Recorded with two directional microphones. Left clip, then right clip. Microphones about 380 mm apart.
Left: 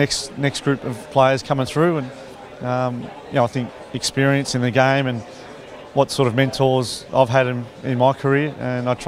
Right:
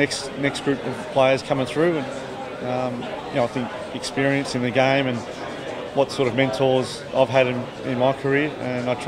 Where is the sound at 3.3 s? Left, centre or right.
Left.